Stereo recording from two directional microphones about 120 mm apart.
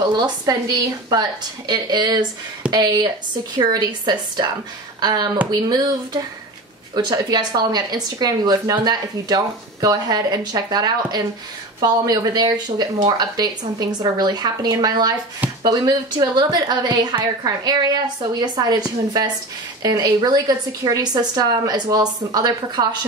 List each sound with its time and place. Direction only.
0.1 s speech: 35° right (ahead or behind)